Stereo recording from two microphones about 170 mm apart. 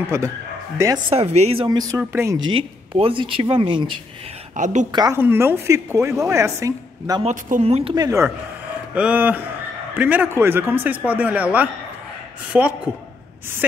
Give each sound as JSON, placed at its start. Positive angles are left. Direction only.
{"t": 0.1, "sound": "a woman's voice", "side_deg": -15}
{"t": 1.1, "sound": "speech", "side_deg": -40}
{"t": 2.0, "sound": "a woman's voice", "side_deg": -15}
{"t": 3.0, "sound": "speech", "side_deg": -30}
{"t": 4.6, "sound": "a woman's voice", "side_deg": -45}
{"t": 4.9, "sound": "speech", "side_deg": -20}
{"t": 5.2, "sound": "a woman's voice", "side_deg": -10}
{"t": 7.2, "sound": "speech", "side_deg": -45}
{"t": 7.9, "sound": "speech", "side_deg": -20}
{"t": 8.9, "sound": "a woman's voice", "side_deg": -10}